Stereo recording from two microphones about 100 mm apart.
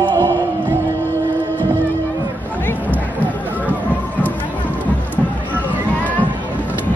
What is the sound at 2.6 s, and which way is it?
Music, 15° left (ahead or behind).